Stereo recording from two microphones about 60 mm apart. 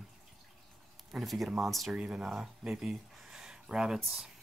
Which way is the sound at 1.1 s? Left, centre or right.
Centre.